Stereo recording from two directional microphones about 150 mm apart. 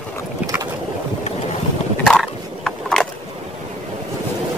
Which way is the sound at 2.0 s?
5° left (ahead or behind).